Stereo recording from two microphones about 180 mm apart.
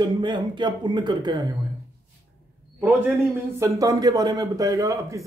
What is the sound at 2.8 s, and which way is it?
Speech, 15° right (ahead or behind).